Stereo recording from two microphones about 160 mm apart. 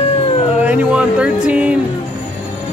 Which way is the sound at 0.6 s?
10° right (ahead or behind).